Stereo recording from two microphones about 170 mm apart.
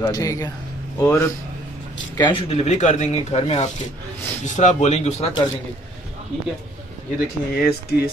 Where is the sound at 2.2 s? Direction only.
30° left (ahead or behind).